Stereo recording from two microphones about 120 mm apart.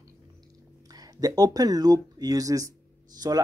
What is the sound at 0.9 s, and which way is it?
Speech, 30° right (ahead or behind).